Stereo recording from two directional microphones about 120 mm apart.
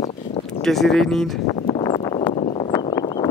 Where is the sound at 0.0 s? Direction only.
65° left (ahead or behind).